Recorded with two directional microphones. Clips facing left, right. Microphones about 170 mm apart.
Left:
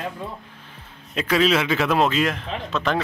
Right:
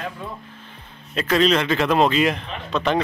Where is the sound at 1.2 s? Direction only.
5° left (ahead or behind).